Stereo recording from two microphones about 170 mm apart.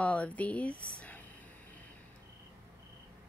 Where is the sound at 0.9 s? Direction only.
10° left (ahead or behind).